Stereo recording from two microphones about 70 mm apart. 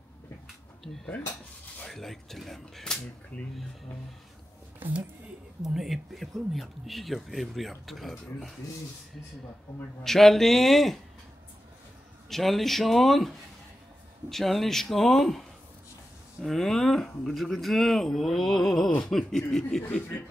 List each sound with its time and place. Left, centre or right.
1.9 s speech: centre
4.8 s speech: right
5.6 s speech: centre
10.0 s speech: centre
12.3 s speech: centre
14.3 s speech: centre
16.4 s speech: centre